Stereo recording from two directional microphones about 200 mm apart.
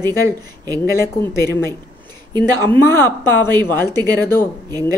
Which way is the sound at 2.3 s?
20° right (ahead or behind).